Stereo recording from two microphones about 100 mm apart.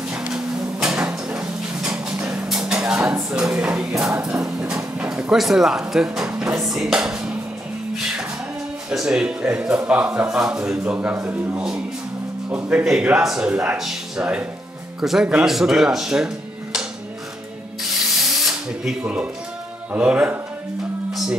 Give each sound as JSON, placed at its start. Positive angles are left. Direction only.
{"t": 0.1, "sound": "a sound", "side_deg": -5}
{"t": 3.6, "sound": "music", "side_deg": -5}
{"t": 4.1, "sound": "a sound", "side_deg": -10}
{"t": 6.6, "sound": "speech", "side_deg": -5}
{"t": 8.9, "sound": "a man's voice", "side_deg": -5}
{"t": 18.3, "sound": "drill", "side_deg": -5}
{"t": 19.9, "sound": "a man's voice", "side_deg": -10}